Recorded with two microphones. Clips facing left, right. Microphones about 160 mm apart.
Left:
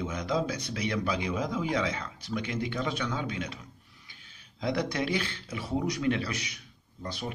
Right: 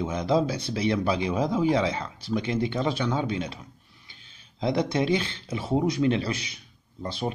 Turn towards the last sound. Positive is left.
turn(degrees=-30)  # may be behind; listen again after turning